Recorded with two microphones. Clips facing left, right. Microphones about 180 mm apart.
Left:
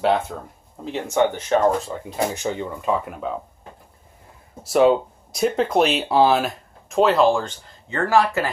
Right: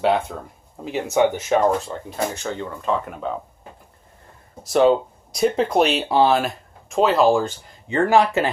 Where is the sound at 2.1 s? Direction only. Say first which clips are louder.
Left 2 dB; 15° left (ahead or behind).